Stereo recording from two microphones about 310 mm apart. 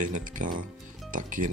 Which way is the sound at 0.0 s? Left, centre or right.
Right.